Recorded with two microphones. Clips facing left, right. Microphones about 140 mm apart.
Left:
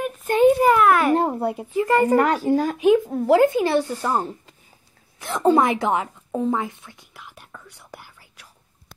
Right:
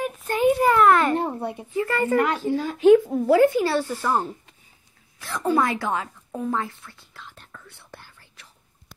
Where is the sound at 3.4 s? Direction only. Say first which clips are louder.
Left 1 dB; 20° left (ahead or behind).